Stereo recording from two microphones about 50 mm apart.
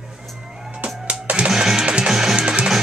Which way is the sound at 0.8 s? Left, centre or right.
Right.